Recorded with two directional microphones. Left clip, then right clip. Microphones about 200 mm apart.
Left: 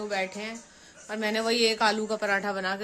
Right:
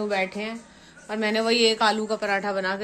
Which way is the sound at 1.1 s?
5° left (ahead or behind).